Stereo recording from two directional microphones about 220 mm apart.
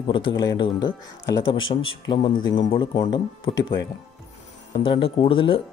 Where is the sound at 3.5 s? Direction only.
55° left (ahead or behind).